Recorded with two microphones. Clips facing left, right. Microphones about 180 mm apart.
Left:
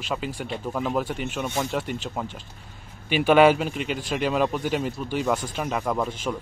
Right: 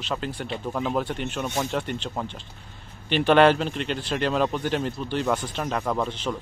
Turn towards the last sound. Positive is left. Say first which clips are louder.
# even
turn(degrees=10)  # may be behind; listen again after turning